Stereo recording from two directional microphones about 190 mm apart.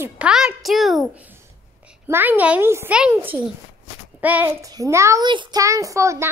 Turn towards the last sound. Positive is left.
turn(degrees=-15)  # may be behind; listen again after turning